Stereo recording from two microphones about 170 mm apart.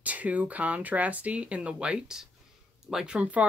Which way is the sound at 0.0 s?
10° right (ahead or behind).